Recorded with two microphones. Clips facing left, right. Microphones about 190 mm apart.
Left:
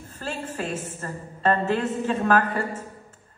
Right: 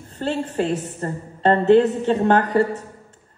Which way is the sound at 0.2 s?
25° right (ahead or behind).